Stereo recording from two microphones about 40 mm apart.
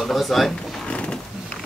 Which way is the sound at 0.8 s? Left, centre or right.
Left.